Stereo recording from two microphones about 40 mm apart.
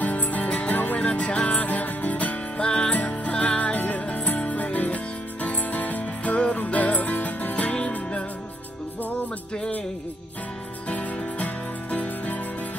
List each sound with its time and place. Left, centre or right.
0.0 s music: left
1.0 s music: left
10.9 s music: left